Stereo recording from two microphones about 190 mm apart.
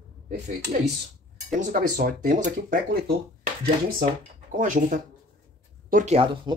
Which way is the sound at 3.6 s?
45° right (ahead or behind).